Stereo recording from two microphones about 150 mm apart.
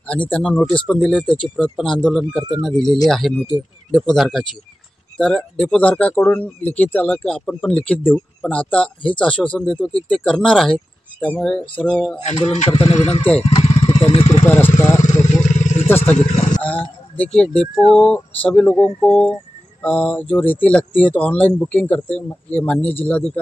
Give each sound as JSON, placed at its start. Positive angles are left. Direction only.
{"t": 0.0, "sound": "speech", "side_deg": 10}
{"t": 12.3, "sound": "speech", "side_deg": 45}
{"t": 14.5, "sound": "speech", "side_deg": 15}
{"t": 15.0, "sound": "vehicle", "side_deg": 55}
{"t": 16.6, "sound": "speech", "side_deg": 10}